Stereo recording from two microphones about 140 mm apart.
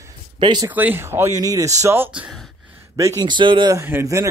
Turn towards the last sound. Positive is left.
turn(degrees=-20)  # may be behind; listen again after turning